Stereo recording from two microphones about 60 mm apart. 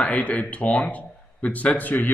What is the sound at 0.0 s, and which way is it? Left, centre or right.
Speech, left.